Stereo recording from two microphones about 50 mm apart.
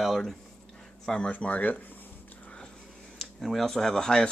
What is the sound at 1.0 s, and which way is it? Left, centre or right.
Speech, centre.